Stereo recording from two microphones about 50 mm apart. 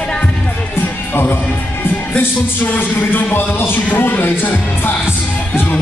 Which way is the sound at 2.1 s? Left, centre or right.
Left.